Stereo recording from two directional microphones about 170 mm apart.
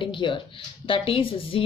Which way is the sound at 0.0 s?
30° left (ahead or behind).